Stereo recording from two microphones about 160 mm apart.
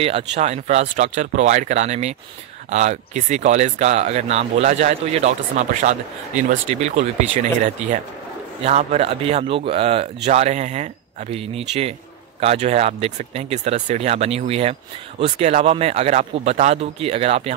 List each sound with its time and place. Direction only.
0.0 s speech: 40° right (ahead or behind)